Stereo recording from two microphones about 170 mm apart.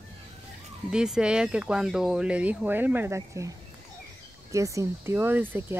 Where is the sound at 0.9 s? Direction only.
5° right (ahead or behind).